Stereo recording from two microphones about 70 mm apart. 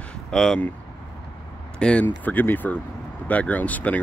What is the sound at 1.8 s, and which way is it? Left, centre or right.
Speech, centre.